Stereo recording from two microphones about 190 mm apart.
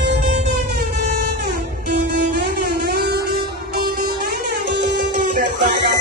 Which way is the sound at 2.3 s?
60° right (ahead or behind).